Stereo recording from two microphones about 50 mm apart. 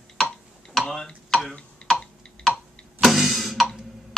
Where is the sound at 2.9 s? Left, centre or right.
Centre.